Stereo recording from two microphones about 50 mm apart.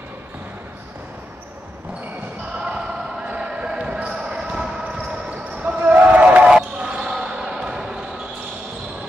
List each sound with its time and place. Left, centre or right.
2.6 s basketball bounce: centre
4.9 s basketball bounce: right
6.4 s basketball bounce: centre